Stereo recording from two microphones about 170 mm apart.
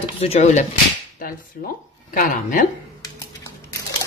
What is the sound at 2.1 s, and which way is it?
Speech, 50° left (ahead or behind).